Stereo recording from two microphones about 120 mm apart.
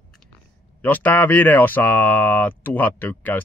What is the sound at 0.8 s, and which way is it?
Speech, 15° left (ahead or behind).